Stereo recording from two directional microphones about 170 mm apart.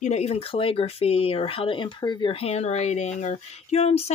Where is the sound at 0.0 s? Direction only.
40° left (ahead or behind).